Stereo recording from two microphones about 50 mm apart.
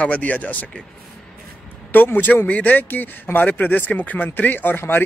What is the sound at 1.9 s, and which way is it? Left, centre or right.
Speech, left.